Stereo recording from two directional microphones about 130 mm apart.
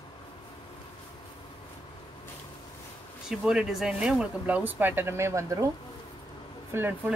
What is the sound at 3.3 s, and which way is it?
Speech, 5° right (ahead or behind).